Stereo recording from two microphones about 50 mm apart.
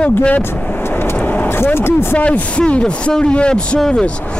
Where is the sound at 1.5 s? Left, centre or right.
Left.